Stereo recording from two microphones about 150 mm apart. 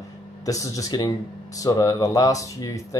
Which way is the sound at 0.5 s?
20° left (ahead or behind).